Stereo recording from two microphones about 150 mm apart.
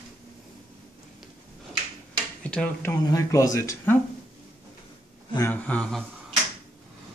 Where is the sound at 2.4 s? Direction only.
10° left (ahead or behind).